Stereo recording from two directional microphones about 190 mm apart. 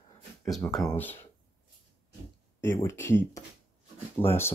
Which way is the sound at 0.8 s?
10° left (ahead or behind).